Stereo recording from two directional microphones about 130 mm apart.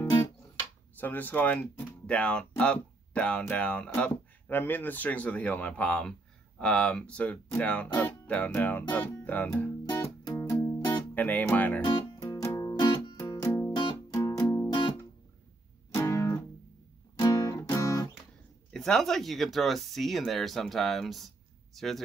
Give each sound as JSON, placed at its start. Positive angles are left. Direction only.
{"t": 0.0, "sound": "music", "side_deg": 30}
{"t": 0.9, "sound": "speech", "side_deg": 15}
{"t": 9.8, "sound": "music", "side_deg": 25}
{"t": 12.4, "sound": "music", "side_deg": 30}
{"t": 13.7, "sound": "music", "side_deg": 30}
{"t": 15.9, "sound": "music", "side_deg": 25}
{"t": 18.7, "sound": "speech", "side_deg": 5}